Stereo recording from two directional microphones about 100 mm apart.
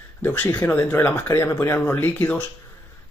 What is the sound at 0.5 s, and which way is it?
Speech, 20° left (ahead or behind).